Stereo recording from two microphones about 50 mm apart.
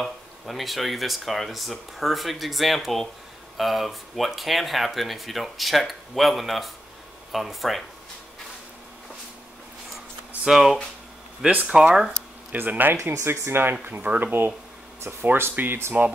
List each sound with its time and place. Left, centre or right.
0.0 s speech: centre
10.5 s speech: centre
11.6 s speech: centre
12.5 s speech: right
13.1 s speech: right
14.0 s speech: right
15.0 s speech: right